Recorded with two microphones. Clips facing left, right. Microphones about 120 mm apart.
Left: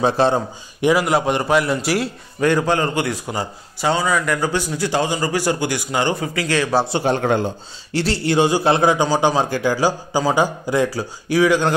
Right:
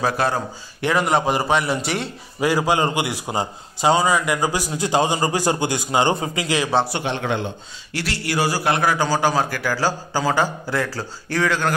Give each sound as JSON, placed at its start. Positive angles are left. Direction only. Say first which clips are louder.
{"t": 0.0, "sound": "a man's voice", "louder": "left 5 dB", "side_deg": 25}
{"t": 0.9, "sound": "a man's voice", "louder": "right 3 dB", "side_deg": 0}
{"t": 2.4, "sound": "a man's voice", "louder": "left 1 dB", "side_deg": -10}
{"t": 6.9, "sound": "a man's voice", "louder": "left 6 dB", "side_deg": 40}
{"t": 7.9, "sound": "a man's voice", "louder": "left 6 dB", "side_deg": 30}